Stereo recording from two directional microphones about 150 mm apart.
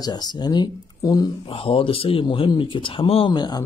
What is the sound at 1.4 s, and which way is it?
Speech, 35° left (ahead or behind).